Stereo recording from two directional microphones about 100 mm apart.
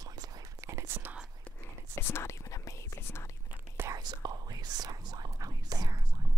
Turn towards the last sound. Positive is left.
turn(degrees=-40)  # may be behind; listen again after turning